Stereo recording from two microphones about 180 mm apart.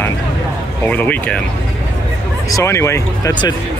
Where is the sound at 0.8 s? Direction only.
10° left (ahead or behind).